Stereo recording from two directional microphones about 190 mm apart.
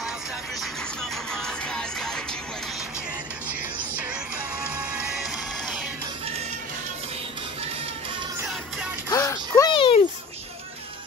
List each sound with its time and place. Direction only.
1.3 s music: 5° left (ahead or behind)
4.7 s music: 5° right (ahead or behind)
9.1 s a sound: 15° left (ahead or behind)